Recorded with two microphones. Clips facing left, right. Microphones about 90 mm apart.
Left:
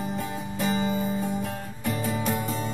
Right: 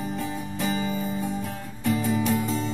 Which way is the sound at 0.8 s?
25° left (ahead or behind).